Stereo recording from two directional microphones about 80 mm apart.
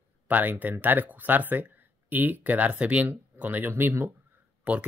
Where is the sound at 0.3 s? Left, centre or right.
Right.